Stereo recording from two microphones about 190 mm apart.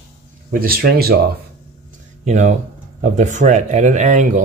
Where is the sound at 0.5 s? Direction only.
50° right (ahead or behind).